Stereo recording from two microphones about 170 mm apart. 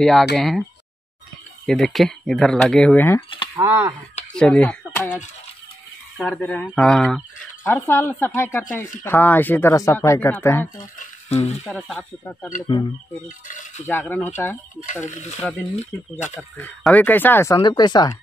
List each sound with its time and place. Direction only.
0.0 s speech: centre (ahead or behind)
1.7 s speech: centre (ahead or behind)
3.5 s speech: 10° right (ahead or behind)
4.3 s speech: 5° left (ahead or behind)
7.6 s speech: 15° left (ahead or behind)
11.0 s speech: 40° left (ahead or behind)
11.9 s speech: 5° left (ahead or behind)
13.5 s speech: 50° left (ahead or behind)
13.8 s speech: 10° left (ahead or behind)
15.0 s speech: 45° left (ahead or behind)
16.5 s speech: 10° left (ahead or behind)
17.6 s speech: 25° left (ahead or behind)